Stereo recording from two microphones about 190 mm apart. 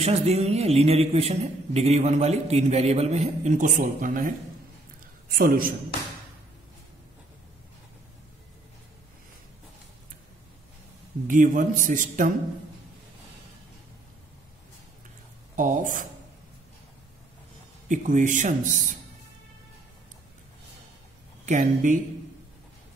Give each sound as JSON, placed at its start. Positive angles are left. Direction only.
{"t": 0.0, "sound": "a man's voice", "side_deg": -35}
{"t": 5.4, "sound": "a man's voice", "side_deg": -50}
{"t": 11.2, "sound": "a man's voice", "side_deg": -45}
{"t": 15.5, "sound": "a man's voice", "side_deg": -45}
{"t": 17.8, "sound": "a man's voice", "side_deg": -40}
{"t": 21.5, "sound": "a man's voice", "side_deg": -40}